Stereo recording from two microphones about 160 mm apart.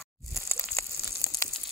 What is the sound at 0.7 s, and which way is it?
Frying, 15° left (ahead or behind).